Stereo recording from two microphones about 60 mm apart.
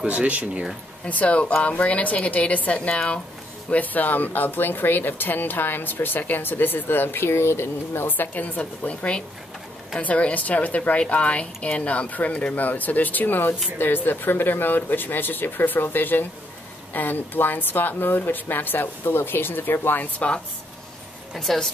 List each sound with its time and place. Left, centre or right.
0.0 s speech: right
1.0 s a woman's voice: left
8.4 s a woman's voice: left
21.4 s a woman's voice: centre